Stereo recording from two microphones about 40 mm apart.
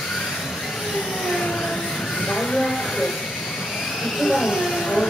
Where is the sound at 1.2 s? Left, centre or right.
Centre.